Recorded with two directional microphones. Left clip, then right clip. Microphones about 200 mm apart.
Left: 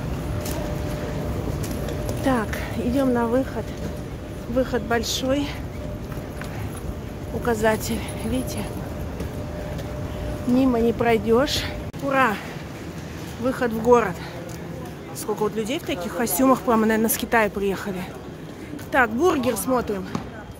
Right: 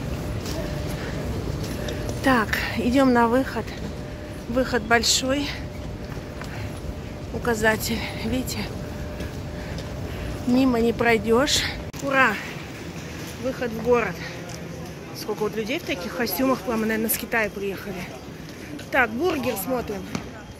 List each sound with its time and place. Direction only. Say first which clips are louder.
2.2 s speech: right 4 dB; 5° right (ahead or behind)
7.4 s speech: even; 5° left (ahead or behind)
10.6 s speech: even; centre (ahead or behind)
13.5 s speech: left 4 dB; 25° left (ahead or behind)
15.4 s speech: even; 10° left (ahead or behind)
18.9 s speech: left 3 dB; 15° left (ahead or behind)